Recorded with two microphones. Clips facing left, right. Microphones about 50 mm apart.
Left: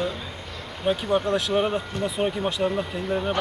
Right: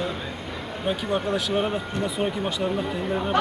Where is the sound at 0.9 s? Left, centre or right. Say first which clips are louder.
Left 3 dB; centre.